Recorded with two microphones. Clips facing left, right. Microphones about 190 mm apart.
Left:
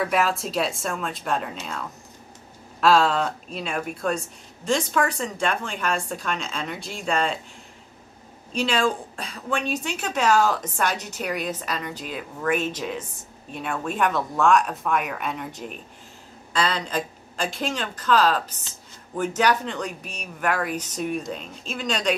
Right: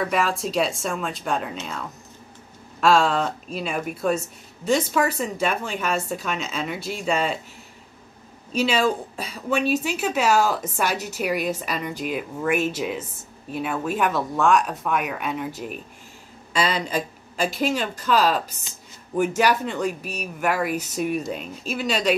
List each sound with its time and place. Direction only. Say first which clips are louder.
0.0 s a woman's voice: even; centre (ahead or behind)
2.8 s a woman's voice: even; centre (ahead or behind)
8.5 s a woman's voice: right 2 dB; 5° right (ahead or behind)